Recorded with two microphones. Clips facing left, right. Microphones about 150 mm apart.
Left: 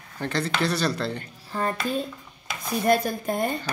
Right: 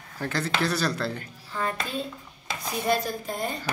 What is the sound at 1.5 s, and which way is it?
Speech, 35° left (ahead or behind).